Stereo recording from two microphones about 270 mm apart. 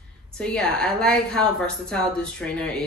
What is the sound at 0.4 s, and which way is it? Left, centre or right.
Speech, centre.